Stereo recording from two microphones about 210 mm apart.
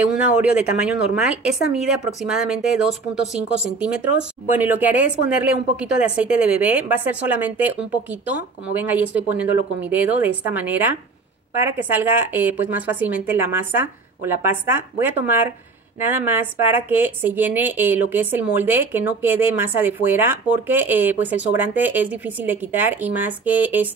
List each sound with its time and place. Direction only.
0.4 s a woman's voice: 5° right (ahead or behind)